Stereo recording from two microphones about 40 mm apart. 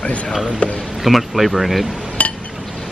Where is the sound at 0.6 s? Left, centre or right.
Left.